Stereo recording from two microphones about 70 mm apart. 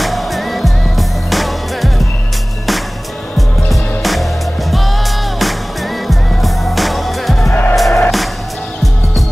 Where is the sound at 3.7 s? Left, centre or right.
Centre.